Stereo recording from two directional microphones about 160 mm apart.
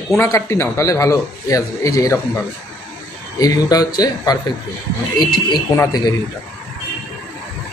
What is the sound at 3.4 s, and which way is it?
A man's voice, 25° left (ahead or behind).